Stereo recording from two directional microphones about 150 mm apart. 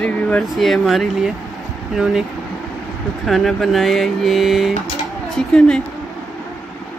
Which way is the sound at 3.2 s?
Centre (ahead or behind).